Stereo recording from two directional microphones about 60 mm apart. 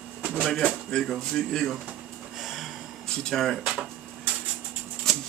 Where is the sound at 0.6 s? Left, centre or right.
Left.